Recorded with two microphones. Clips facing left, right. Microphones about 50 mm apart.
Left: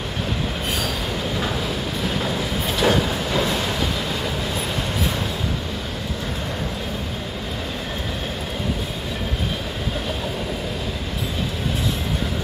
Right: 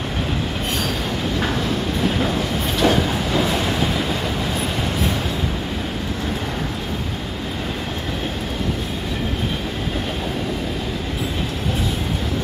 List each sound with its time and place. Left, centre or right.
2.0 s train: centre